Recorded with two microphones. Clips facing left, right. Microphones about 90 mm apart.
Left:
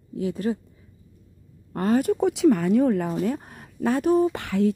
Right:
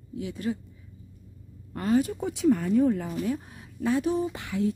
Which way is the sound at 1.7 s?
50° left (ahead or behind).